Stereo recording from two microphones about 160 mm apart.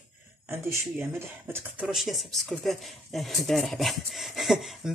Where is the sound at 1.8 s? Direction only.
Centre (ahead or behind).